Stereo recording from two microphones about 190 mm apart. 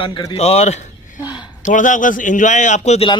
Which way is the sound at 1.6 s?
40° left (ahead or behind).